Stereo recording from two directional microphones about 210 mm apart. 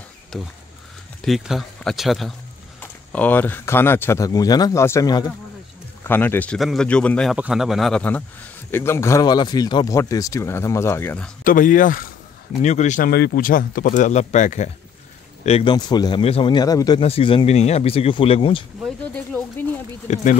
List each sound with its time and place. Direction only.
0.3 s speech: centre (ahead or behind)
11.4 s a man's voice: 40° left (ahead or behind)
18.9 s a sound: 5° left (ahead or behind)
20.1 s speech: 35° left (ahead or behind)